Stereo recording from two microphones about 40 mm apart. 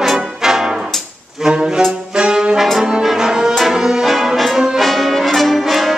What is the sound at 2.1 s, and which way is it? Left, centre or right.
Brass instrument, right.